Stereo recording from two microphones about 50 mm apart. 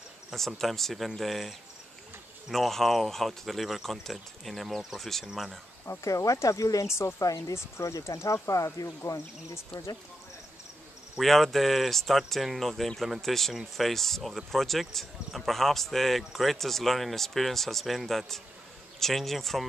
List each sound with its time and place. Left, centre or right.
0.6 s speech: centre
2.5 s speech: centre
5.9 s speech: left
7.0 s speech: left
11.1 s speech: centre